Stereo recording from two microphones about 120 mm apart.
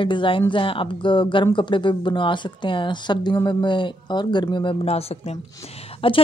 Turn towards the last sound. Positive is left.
turn(degrees=50)  # may be behind; listen again after turning